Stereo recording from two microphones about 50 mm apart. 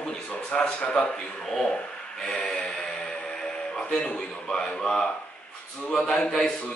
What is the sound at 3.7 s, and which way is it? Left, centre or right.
A man's voice, left.